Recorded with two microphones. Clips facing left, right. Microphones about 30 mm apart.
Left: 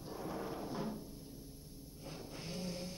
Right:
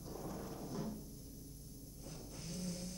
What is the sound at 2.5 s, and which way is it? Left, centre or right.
Vehicle, left.